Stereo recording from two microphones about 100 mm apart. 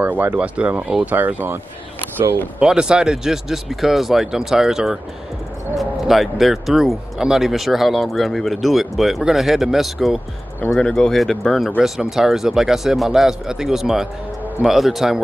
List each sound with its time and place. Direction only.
0.0 s speech: 20° right (ahead or behind)
2.6 s speech: 10° right (ahead or behind)